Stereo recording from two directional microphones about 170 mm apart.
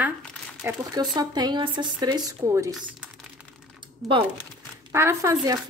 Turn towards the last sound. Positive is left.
turn(degrees=-20)  # may be behind; listen again after turning